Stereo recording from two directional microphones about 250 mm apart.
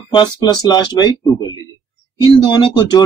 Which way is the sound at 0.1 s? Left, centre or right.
Centre.